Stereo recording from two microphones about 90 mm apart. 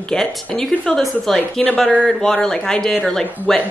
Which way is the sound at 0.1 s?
5° left (ahead or behind).